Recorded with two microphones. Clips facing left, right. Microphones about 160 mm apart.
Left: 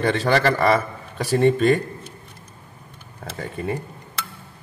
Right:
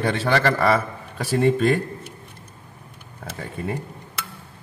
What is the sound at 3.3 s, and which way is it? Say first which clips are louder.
Speech: left 2 dB; centre (ahead or behind).